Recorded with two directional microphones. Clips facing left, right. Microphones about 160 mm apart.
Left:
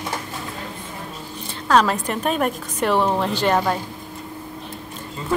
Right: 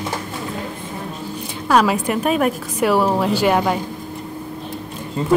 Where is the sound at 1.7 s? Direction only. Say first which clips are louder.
Right 2 dB; 10° right (ahead or behind).